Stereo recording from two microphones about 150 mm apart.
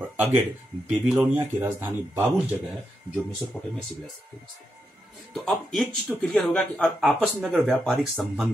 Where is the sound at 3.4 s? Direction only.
15° left (ahead or behind).